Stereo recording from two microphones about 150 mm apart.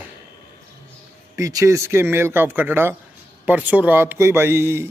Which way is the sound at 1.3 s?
20° right (ahead or behind).